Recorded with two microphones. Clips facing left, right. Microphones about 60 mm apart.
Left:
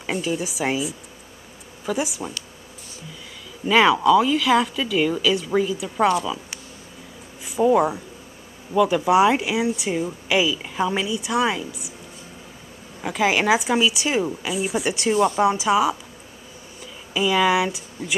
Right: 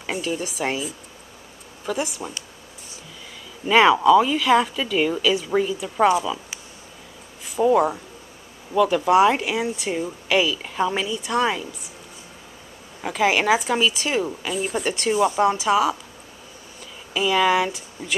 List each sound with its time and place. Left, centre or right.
0.0 s speech: centre
3.6 s speech: centre
7.6 s a woman's voice: centre
13.0 s a woman's voice: centre
15.4 s a woman's voice: centre
17.1 s speech: centre